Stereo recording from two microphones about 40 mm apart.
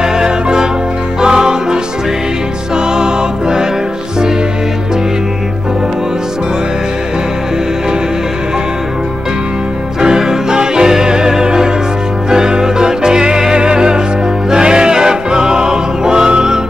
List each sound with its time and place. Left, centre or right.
0.0 s music: centre
3.0 s music: centre
10.0 s music: centre